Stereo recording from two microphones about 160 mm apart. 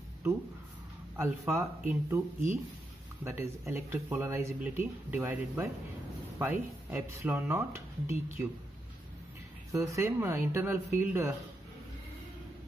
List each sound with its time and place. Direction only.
1.1 s speech: 15° right (ahead or behind)
3.3 s speech: 15° right (ahead or behind)
9.7 s speech: 20° right (ahead or behind)